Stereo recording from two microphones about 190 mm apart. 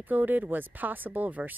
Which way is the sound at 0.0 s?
10° right (ahead or behind).